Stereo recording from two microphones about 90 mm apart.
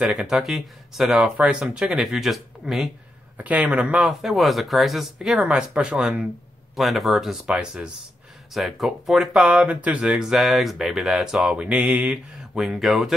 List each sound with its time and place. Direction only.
0.0 s speech: 10° right (ahead or behind)
3.3 s a man's voice: 15° right (ahead or behind)
4.1 s speech: 5° right (ahead or behind)
6.7 s speech: centre (ahead or behind)
12.5 s speech: centre (ahead or behind)